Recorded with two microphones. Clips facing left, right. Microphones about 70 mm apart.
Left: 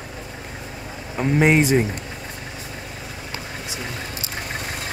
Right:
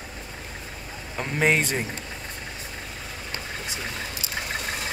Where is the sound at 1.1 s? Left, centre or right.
Centre.